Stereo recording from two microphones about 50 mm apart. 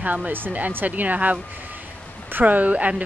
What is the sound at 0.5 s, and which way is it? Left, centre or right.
A woman's voice, right.